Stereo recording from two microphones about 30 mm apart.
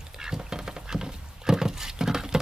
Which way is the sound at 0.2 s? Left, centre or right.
Right.